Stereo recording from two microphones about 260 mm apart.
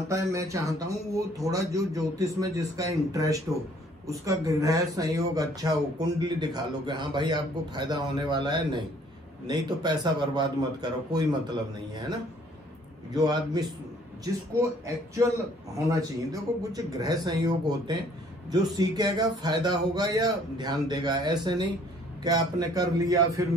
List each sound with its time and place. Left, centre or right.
0.1 s speech: centre
15.9 s speech: centre